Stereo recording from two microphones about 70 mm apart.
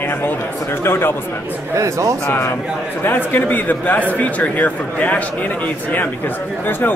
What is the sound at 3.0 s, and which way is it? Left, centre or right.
Speech, left.